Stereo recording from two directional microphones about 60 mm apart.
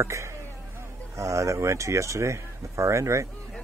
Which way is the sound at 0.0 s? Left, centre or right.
Right.